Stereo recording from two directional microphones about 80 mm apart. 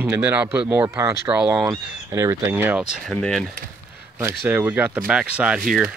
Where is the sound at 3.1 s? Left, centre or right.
Centre.